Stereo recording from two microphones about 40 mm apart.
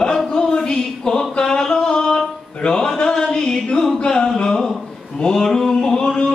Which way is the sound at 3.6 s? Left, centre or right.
Left.